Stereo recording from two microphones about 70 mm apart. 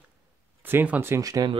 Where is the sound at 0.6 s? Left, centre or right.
Right.